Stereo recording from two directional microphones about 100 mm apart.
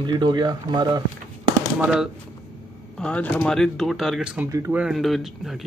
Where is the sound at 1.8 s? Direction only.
5° right (ahead or behind).